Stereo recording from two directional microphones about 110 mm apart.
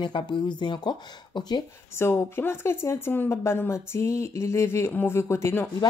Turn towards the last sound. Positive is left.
turn(degrees=20)  # may be behind; listen again after turning